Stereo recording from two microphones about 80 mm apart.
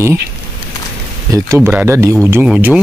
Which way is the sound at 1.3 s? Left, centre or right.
Right.